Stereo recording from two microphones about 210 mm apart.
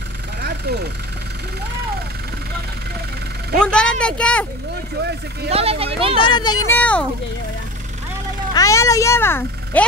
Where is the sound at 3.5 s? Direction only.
5° left (ahead or behind).